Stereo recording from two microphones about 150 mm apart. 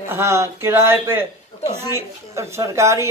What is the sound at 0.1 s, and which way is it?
A man's voice, 20° right (ahead or behind).